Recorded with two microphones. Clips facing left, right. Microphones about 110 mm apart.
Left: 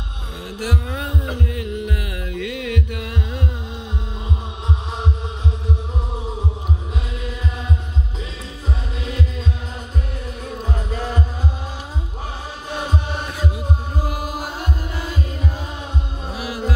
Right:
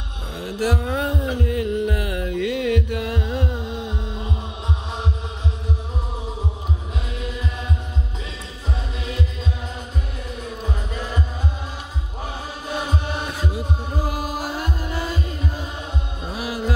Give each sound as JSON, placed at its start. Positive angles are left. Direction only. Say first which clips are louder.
{"t": 0.6, "sound": "heart sounds", "louder": "right 4 dB", "side_deg": -35}